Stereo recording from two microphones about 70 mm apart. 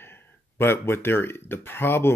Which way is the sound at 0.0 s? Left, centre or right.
Left.